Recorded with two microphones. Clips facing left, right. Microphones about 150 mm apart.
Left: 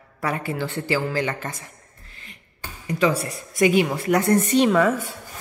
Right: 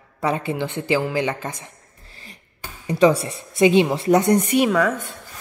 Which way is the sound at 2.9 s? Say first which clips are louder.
Right 5 dB; 30° right (ahead or behind).